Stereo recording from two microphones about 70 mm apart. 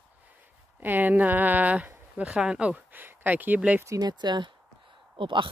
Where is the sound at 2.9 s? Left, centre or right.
Right.